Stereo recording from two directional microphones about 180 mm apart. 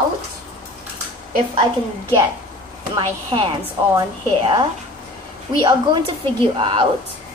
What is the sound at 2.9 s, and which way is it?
Speech, 30° right (ahead or behind).